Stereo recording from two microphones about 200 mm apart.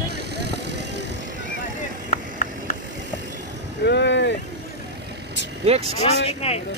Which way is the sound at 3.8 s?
60° left (ahead or behind).